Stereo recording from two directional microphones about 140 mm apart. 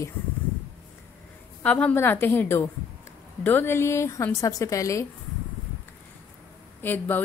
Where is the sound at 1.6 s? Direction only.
10° left (ahead or behind).